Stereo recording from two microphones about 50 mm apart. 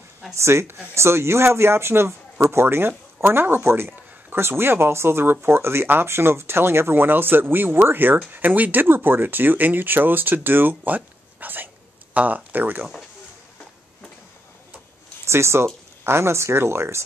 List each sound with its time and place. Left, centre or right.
0.4 s speech: right
8.8 s speech: right
15.2 s speech: right